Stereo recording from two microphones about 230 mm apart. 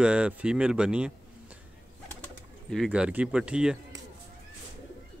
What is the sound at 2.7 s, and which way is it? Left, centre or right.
Speech, centre.